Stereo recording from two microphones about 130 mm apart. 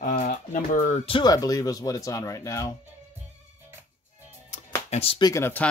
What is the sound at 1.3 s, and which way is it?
Speech, 30° left (ahead or behind).